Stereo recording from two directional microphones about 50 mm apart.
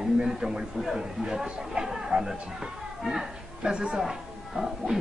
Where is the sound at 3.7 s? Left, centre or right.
Centre.